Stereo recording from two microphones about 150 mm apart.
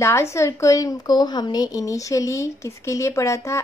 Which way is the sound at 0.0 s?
20° left (ahead or behind).